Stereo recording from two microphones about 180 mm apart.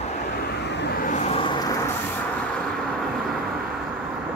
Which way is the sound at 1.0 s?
40° left (ahead or behind).